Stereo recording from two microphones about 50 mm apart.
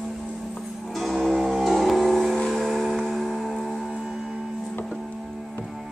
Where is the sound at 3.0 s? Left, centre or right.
Centre.